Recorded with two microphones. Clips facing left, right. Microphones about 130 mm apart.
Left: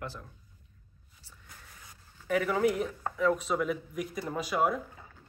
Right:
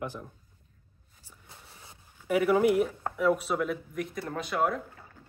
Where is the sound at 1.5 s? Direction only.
25° right (ahead or behind).